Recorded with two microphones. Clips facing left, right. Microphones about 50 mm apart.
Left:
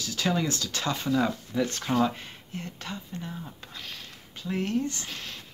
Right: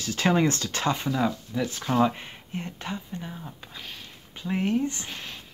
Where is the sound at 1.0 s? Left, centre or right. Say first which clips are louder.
Even; centre.